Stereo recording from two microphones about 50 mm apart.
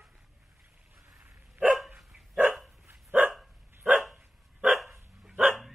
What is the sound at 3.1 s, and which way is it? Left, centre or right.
Dog, right.